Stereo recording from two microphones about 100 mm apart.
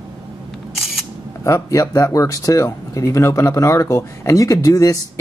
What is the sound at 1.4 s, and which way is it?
Speech, 35° left (ahead or behind).